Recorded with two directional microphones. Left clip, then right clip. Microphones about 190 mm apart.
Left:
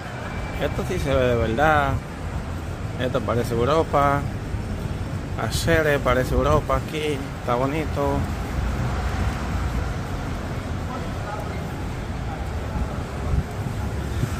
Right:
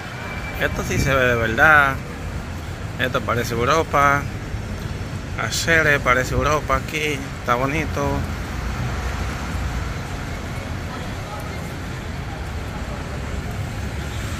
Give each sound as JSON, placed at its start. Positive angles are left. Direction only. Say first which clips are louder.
{"t": 0.6, "sound": "speech", "louder": "right 4 dB", "side_deg": 10}
{"t": 3.0, "sound": "speech", "louder": "right 2 dB", "side_deg": 10}
{"t": 5.4, "sound": "speech", "louder": "right 4 dB", "side_deg": 25}